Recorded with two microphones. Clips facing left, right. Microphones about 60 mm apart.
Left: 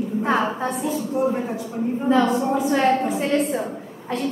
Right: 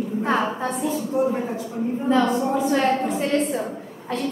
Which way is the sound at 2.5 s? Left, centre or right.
Centre.